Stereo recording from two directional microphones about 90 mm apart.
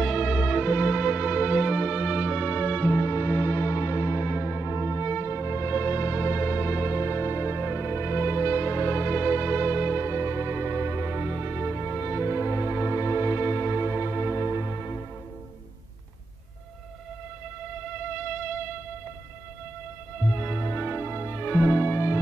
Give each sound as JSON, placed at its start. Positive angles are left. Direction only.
{"t": 0.0, "sound": "music", "side_deg": -5}
{"t": 18.1, "sound": "music", "side_deg": -10}
{"t": 20.3, "sound": "music", "side_deg": -15}
{"t": 20.8, "sound": "music", "side_deg": -25}